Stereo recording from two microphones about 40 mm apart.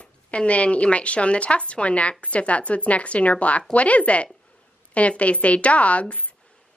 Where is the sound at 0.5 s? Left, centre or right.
Left.